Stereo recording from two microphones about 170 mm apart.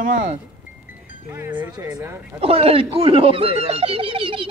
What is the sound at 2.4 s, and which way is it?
Speech, 35° right (ahead or behind).